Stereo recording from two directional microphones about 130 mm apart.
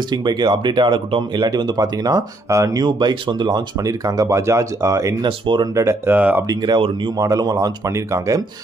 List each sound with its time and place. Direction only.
0.1 s speech: 35° right (ahead or behind)
6.1 s speech: 10° right (ahead or behind)
6.5 s speech: 30° right (ahead or behind)